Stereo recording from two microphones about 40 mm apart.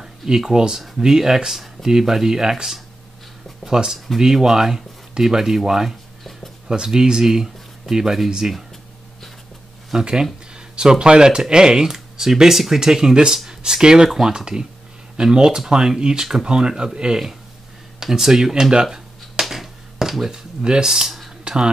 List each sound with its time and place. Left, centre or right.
0.0 s speech: centre
9.9 s speech: right
19.5 s a sound: centre
20.6 s speech: right
20.9 s speech: centre